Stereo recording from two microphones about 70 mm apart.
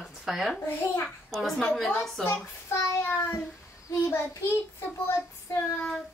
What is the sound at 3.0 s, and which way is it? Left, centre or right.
Child singing, left.